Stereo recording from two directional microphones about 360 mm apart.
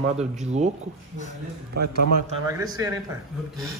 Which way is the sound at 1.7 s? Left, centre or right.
Right.